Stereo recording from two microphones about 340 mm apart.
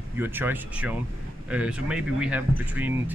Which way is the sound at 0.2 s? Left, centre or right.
Centre.